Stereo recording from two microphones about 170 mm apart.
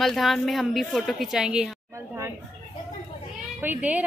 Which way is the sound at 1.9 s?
15° right (ahead or behind).